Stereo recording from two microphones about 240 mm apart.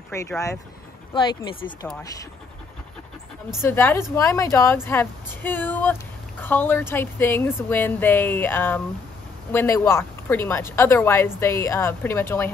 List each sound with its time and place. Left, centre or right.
0.1 s speech: centre
3.6 s speech: centre